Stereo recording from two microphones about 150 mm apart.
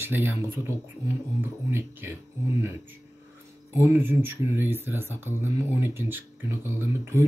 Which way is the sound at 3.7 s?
15° right (ahead or behind).